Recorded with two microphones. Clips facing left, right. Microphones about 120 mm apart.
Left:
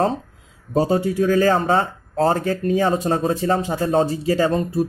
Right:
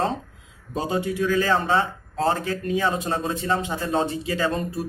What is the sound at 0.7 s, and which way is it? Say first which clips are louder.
A man's voice: left 6 dB; 40° left (ahead or behind).